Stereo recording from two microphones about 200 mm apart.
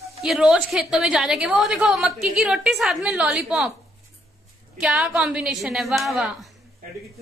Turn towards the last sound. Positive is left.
turn(degrees=0)  # may be behind; listen again after turning